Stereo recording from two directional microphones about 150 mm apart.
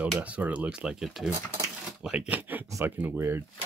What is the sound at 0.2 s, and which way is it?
Speech, 10° right (ahead or behind).